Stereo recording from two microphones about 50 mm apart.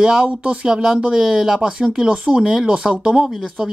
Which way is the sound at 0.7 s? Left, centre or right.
Centre.